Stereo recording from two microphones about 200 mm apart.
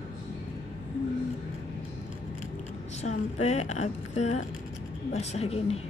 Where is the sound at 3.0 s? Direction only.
35° left (ahead or behind).